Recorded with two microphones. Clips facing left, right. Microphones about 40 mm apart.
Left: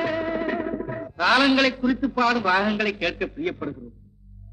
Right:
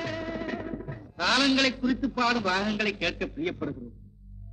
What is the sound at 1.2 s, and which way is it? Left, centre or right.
A man's voice, centre.